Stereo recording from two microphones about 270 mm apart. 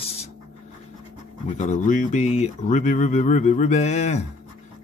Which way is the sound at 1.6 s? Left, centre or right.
Left.